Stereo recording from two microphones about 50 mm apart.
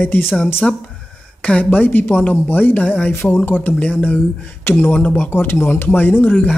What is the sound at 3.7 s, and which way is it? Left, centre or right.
Speech, left.